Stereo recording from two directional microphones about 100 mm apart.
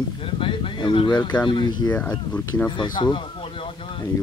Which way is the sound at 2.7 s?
50° left (ahead or behind).